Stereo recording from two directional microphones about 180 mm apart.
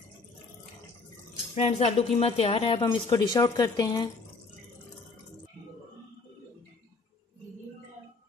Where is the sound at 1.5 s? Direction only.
35° left (ahead or behind).